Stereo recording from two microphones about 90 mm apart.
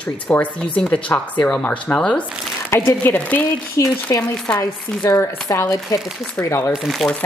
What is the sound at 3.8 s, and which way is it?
Speech, 30° left (ahead or behind).